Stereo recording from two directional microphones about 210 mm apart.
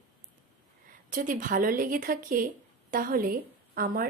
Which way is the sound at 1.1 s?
40° right (ahead or behind).